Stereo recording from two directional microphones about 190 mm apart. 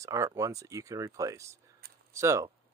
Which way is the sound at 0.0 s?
15° right (ahead or behind).